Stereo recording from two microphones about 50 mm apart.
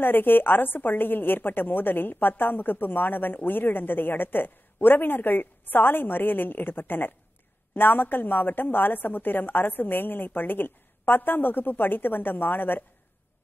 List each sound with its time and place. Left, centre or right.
0.0 s a woman's voice: left